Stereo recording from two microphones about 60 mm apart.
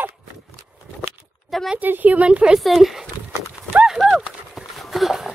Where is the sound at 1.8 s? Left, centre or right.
Right.